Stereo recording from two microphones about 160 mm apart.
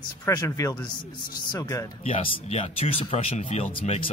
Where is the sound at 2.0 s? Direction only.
40° left (ahead or behind).